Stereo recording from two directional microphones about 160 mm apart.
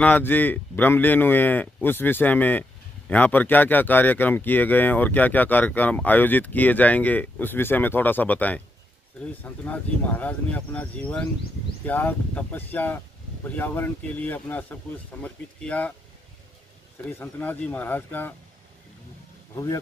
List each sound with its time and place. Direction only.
0.0 s speech: 10° left (ahead or behind)
17.0 s speech: 10° left (ahead or behind)
19.5 s speech: 20° left (ahead or behind)